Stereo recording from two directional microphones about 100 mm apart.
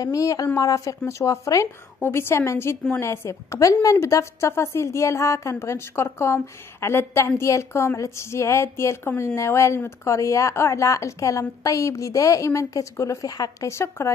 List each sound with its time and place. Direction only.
0.0 s a woman's voice: 35° left (ahead or behind)